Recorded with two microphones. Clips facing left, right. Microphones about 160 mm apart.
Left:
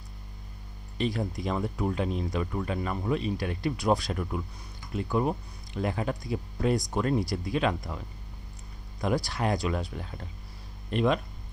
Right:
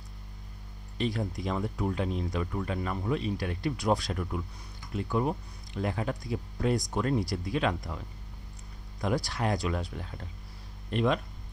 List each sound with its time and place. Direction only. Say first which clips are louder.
0.9 s speech: left 2 dB; 15° left (ahead or behind)
9.0 s speech: left 2 dB; 15° left (ahead or behind)